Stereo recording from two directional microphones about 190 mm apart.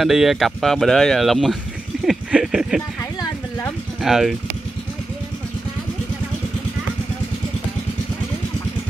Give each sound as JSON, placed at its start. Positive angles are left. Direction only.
{"t": 0.0, "sound": "speech", "side_deg": 0}
{"t": 3.0, "sound": "a sound", "side_deg": 15}
{"t": 4.0, "sound": "speech", "side_deg": 0}